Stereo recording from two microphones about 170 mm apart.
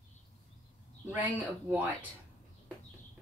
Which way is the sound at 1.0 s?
10° right (ahead or behind).